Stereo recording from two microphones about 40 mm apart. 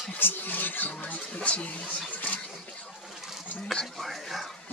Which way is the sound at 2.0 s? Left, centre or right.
Left.